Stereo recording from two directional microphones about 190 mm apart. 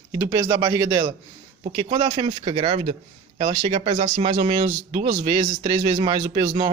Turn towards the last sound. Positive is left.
turn(degrees=-25)  # may be behind; listen again after turning